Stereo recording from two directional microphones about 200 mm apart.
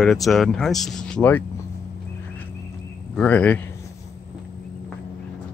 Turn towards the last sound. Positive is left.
turn(degrees=5)  # may be behind; listen again after turning